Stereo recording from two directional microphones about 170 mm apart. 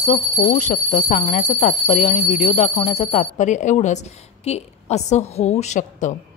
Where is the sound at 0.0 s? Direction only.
40° left (ahead or behind).